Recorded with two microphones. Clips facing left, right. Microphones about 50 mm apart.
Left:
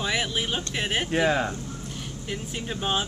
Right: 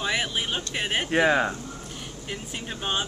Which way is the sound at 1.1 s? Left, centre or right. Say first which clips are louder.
Right 4 dB; centre.